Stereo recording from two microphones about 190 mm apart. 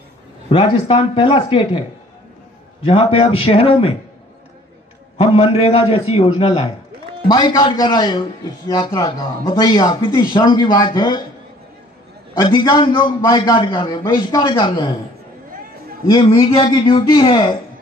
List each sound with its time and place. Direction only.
0.5 s a man's voice: 25° left (ahead or behind)
2.9 s a man's voice: 30° left (ahead or behind)
5.1 s a man's voice: 30° left (ahead or behind)
7.2 s a man's voice: 20° left (ahead or behind)
12.4 s a man's voice: 25° left (ahead or behind)
16.1 s a man's voice: 25° left (ahead or behind)